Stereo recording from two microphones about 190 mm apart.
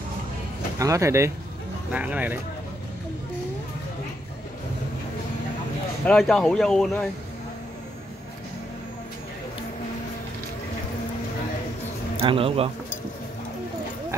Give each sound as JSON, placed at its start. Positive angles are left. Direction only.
{"t": 0.7, "sound": "speech", "side_deg": -15}
{"t": 6.0, "sound": "speech", "side_deg": 0}
{"t": 12.2, "sound": "speech", "side_deg": -30}